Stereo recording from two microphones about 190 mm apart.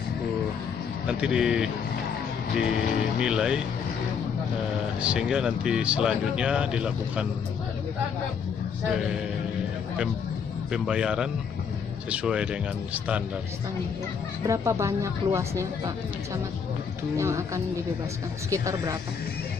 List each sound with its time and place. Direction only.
1.0 s a man's voice: 5° right (ahead or behind)
3.2 s a man's voice: 5° right (ahead or behind)
5.0 s a man's voice: 5° right (ahead or behind)
8.9 s a man's voice: 5° right (ahead or behind)
10.7 s a man's voice: 5° right (ahead or behind)
14.4 s speech: 15° right (ahead or behind)
17.2 s speech: 15° right (ahead or behind)
18.5 s speech: 15° right (ahead or behind)